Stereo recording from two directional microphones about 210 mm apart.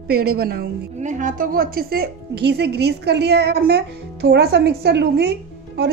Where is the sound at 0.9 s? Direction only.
35° right (ahead or behind).